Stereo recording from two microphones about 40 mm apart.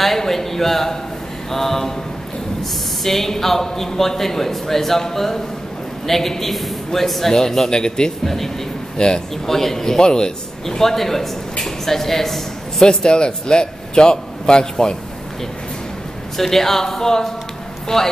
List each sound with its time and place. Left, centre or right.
0.0 s a man's voice: centre
3.0 s a man's voice: centre
9.5 s a man's voice: centre
10.8 s a man's voice: centre
12.8 s a man's voice: left
16.3 s a man's voice: centre